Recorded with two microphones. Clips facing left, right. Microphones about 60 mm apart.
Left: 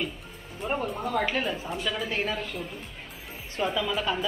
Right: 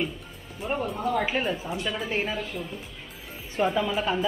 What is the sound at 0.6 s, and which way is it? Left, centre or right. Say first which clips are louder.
A woman's voice: right 2 dB; centre.